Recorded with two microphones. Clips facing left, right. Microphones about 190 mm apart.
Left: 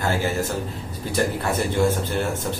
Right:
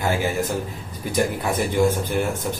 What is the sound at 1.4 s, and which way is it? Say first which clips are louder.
A man's voice: right 2 dB; 15° right (ahead or behind).